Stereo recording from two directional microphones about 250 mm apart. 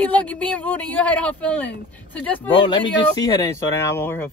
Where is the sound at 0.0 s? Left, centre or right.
Centre.